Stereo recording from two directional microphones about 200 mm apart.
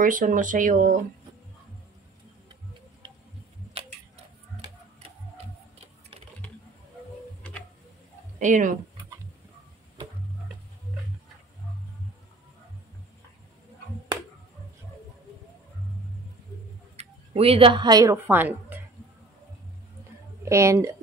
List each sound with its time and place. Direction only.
0.0 s speech: 40° right (ahead or behind)
3.0 s a sound: 25° right (ahead or behind)
8.4 s speech: 40° right (ahead or behind)
16.9 s speech: 30° right (ahead or behind); by 18.8 s 10° right (ahead or behind)
20.4 s a woman's voice: 15° right (ahead or behind)